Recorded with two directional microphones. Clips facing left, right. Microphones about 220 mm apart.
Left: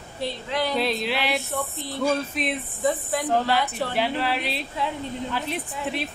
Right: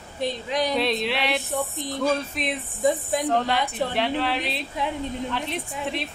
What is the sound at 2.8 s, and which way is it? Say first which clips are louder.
Speech: right 3 dB; 15° right (ahead or behind).